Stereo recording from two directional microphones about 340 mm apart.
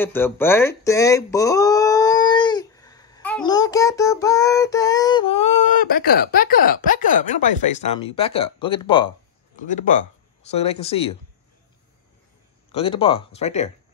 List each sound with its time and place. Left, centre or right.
0.0 s speech: centre
12.7 s speech: centre